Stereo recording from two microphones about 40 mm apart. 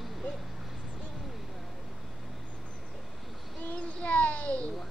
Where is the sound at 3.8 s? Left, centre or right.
Left.